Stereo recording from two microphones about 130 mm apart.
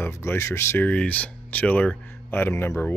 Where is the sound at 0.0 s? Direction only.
20° left (ahead or behind).